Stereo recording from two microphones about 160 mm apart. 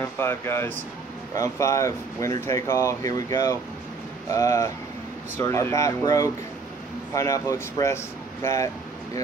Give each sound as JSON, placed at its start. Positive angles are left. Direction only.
{"t": 0.2, "sound": "speech", "side_deg": 15}